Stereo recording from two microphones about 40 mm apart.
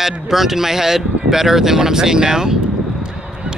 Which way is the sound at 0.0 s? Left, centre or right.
Centre.